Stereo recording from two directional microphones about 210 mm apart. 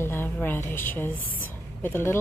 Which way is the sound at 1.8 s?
10° left (ahead or behind).